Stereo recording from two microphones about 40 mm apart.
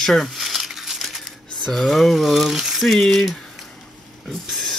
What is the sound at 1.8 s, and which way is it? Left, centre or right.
Speech, centre.